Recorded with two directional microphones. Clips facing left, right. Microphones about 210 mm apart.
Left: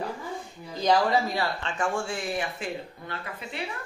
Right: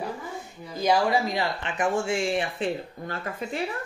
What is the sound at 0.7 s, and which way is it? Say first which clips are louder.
Speech: even; 10° right (ahead or behind).